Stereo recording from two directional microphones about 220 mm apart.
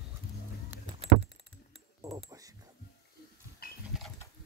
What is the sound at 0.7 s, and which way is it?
Vehicle, 10° right (ahead or behind).